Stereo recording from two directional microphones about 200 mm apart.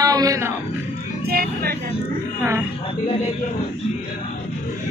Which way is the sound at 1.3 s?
50° right (ahead or behind).